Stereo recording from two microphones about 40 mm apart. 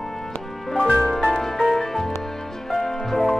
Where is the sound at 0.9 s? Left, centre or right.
Centre.